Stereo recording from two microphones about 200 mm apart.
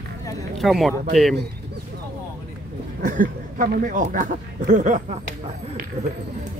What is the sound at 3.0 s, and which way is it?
Speech, 40° right (ahead or behind).